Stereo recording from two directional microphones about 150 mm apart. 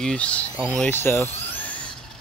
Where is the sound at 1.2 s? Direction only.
10° left (ahead or behind).